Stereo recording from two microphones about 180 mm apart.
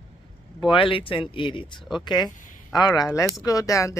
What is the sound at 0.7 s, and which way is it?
Speech, 30° left (ahead or behind).